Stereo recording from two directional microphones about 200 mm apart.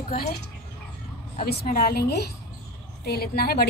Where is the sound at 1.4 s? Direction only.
50° left (ahead or behind).